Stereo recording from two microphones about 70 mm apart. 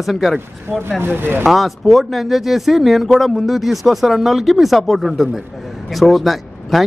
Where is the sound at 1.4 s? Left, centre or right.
Centre.